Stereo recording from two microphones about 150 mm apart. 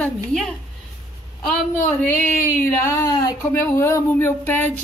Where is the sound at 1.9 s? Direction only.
15° left (ahead or behind).